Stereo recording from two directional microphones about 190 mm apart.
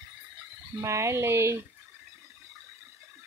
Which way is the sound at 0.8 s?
15° right (ahead or behind).